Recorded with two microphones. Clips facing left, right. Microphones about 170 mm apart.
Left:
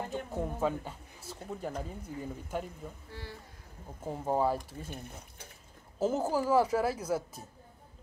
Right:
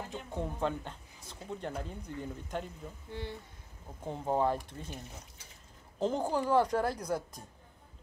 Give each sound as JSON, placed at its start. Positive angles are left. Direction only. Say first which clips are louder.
{"t": 0.3, "sound": "a woman's voice", "louder": "left 1 dB", "side_deg": 5}
{"t": 3.1, "sound": "speech", "louder": "right 5 dB", "side_deg": -20}
{"t": 4.0, "sound": "a woman's voice", "louder": "left 1 dB", "side_deg": 5}